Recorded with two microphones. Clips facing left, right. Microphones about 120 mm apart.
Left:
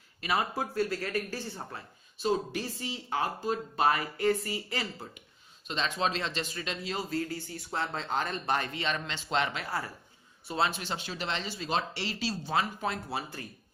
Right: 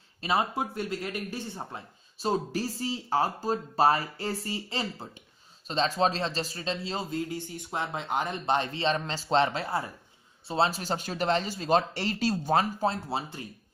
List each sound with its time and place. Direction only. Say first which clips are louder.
0.2 s speech: right 3 dB; 25° right (ahead or behind)
2.1 s speech: right 1 dB; 35° right (ahead or behind)
12.9 s speech: right 3 dB; 25° right (ahead or behind)